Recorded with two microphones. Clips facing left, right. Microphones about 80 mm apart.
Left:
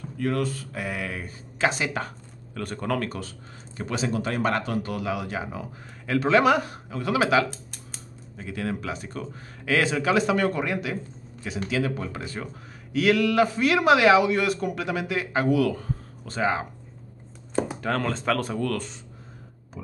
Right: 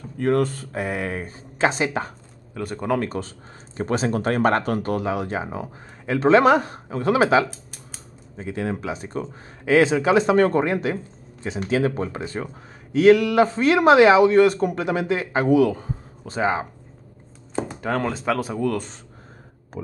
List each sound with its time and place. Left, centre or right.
0.2 s speech: right
2.5 s speech: centre
17.7 s speech: centre